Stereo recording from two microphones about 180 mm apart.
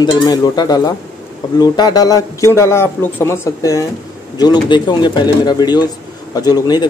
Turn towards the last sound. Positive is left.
turn(degrees=20)  # may be behind; listen again after turning